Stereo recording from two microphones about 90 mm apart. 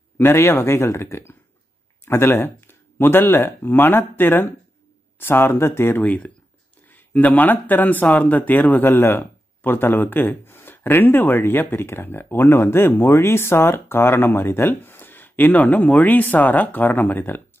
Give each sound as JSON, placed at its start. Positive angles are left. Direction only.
{"t": 0.2, "sound": "speech", "side_deg": 25}